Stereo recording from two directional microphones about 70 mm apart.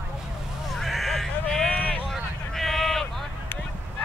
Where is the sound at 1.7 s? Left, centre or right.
Left.